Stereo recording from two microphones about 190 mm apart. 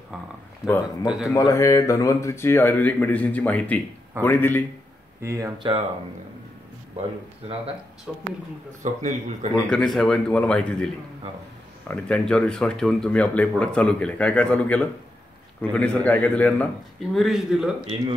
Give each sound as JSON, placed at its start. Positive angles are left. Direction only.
{"t": 0.6, "sound": "speech", "side_deg": -5}
{"t": 1.3, "sound": "speech", "side_deg": 15}
{"t": 5.2, "sound": "speech", "side_deg": -15}
{"t": 5.6, "sound": "speech", "side_deg": -30}
{"t": 8.1, "sound": "speech", "side_deg": 0}
{"t": 8.8, "sound": "a man's voice", "side_deg": -40}
{"t": 9.5, "sound": "speech", "side_deg": 5}
{"t": 11.9, "sound": "speech", "side_deg": 5}